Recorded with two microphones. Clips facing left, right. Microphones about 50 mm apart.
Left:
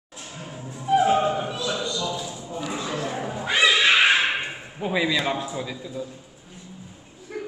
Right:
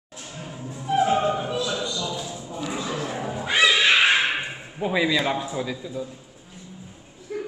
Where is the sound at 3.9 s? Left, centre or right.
Centre.